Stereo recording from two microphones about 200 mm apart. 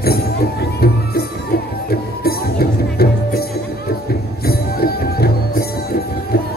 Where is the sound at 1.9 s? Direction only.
50° left (ahead or behind).